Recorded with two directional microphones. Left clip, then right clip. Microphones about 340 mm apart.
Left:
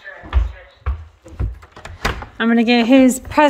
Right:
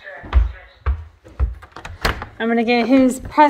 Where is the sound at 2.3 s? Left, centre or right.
Left.